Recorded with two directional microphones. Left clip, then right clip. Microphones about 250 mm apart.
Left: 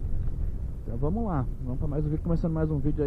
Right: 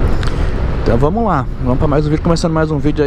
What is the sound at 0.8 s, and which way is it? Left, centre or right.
Speech, centre.